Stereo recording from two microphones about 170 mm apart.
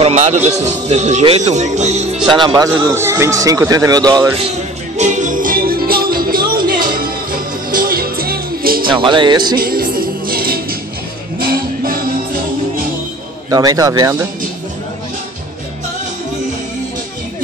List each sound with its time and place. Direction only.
0.0 s speech: 40° right (ahead or behind)
2.2 s speech: 25° right (ahead or behind)
4.9 s music: 45° right (ahead or behind); by 8.8 s 60° right (ahead or behind)
8.8 s speech: 30° right (ahead or behind)
9.6 s music: 60° right (ahead or behind)
13.5 s a man's voice: 20° right (ahead or behind)